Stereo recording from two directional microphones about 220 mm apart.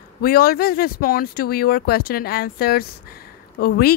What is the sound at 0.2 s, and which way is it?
Speech, 40° left (ahead or behind).